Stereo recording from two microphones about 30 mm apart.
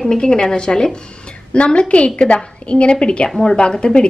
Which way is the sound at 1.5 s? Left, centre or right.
Left.